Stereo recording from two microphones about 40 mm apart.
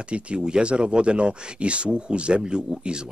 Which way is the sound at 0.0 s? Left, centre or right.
Right.